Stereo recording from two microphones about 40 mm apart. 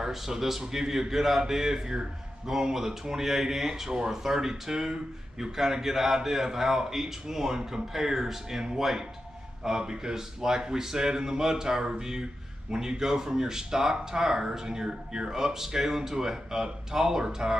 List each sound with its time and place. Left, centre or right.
0.0 s a man's voice: centre